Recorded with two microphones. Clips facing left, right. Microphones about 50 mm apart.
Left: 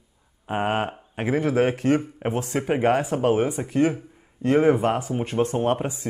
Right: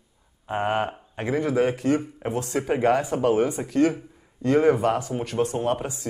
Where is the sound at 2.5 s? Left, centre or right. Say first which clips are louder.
Even; left.